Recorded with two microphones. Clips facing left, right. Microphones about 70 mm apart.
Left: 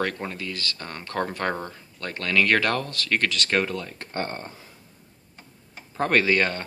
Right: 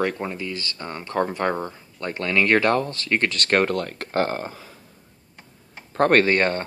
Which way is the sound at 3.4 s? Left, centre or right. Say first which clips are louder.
Right 4 dB; right.